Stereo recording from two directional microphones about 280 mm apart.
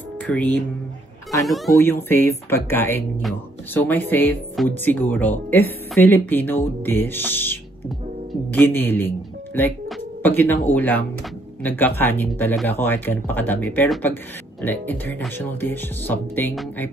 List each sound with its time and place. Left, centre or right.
1.4 s speech: centre